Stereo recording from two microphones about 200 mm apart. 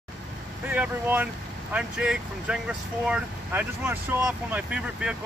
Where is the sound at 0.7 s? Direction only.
10° right (ahead or behind).